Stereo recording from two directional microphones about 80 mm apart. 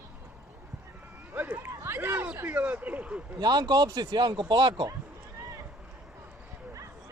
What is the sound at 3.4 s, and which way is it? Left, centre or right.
Speech, right.